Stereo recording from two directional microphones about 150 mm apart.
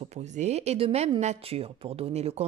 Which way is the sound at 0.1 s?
50° right (ahead or behind).